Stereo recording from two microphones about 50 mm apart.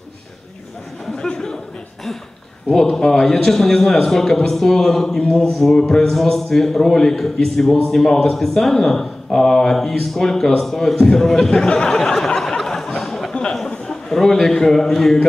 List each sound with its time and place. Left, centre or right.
2.7 s a man's voice: centre
13.3 s a sound: centre
13.7 s a man's voice: centre